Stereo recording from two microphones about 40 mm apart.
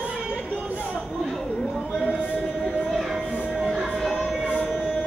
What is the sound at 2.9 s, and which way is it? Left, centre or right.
Music, centre.